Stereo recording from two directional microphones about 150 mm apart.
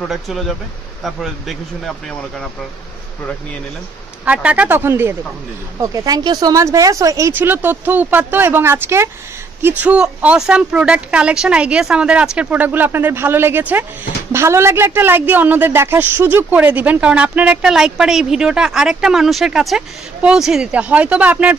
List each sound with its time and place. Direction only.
0.1 s speech: centre (ahead or behind)
4.2 s a woman's voice: 10° right (ahead or behind)